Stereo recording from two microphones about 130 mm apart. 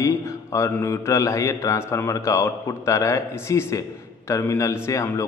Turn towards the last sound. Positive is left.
turn(degrees=25)  # may be behind; listen again after turning